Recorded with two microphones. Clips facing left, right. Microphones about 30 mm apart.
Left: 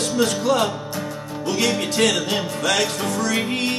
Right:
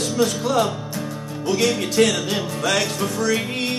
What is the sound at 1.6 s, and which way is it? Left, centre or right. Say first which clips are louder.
Music: right 1 dB; centre.